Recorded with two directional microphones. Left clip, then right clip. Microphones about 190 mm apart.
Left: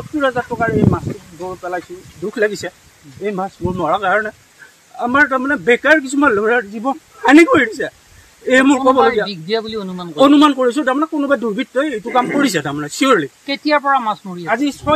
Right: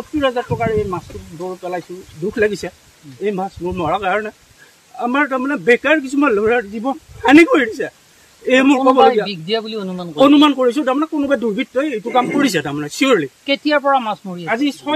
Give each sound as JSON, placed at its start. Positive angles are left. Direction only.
{"t": 0.2, "sound": "speech", "side_deg": -5}
{"t": 9.3, "sound": "speech", "side_deg": -35}
{"t": 10.1, "sound": "speech", "side_deg": -5}
{"t": 13.5, "sound": "speech", "side_deg": -40}
{"t": 14.4, "sound": "speech", "side_deg": -5}